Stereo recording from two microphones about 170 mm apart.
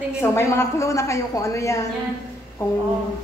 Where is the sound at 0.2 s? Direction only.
15° left (ahead or behind).